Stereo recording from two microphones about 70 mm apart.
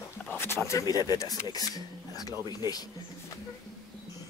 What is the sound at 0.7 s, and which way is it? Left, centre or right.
Speech, left.